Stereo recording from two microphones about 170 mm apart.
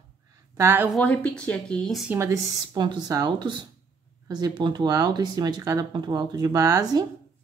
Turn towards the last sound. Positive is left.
turn(degrees=-20)  # may be behind; listen again after turning